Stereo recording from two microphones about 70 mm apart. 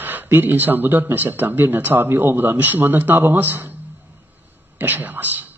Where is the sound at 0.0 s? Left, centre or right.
Right.